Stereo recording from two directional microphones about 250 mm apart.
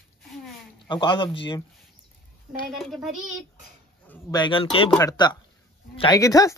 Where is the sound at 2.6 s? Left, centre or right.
Centre.